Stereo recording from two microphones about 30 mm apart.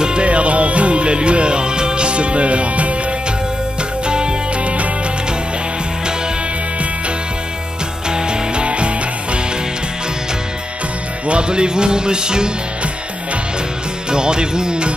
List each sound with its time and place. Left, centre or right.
0.0 s music: right
4.0 s music: right
4.6 s music: right
8.1 s music: right
11.2 s music: right
14.1 s music: right